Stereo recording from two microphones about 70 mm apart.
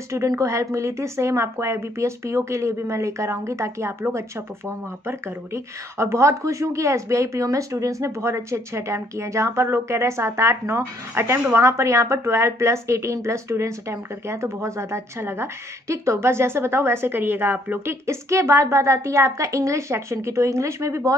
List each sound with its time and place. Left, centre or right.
0.4 s a woman's voice: right
18.0 s speech: right